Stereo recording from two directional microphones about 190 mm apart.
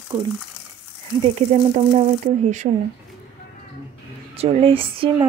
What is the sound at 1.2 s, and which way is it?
Speech, 35° right (ahead or behind).